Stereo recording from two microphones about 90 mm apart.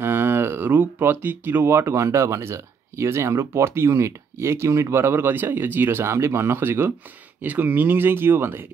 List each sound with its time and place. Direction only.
0.0 s speech: 25° right (ahead or behind)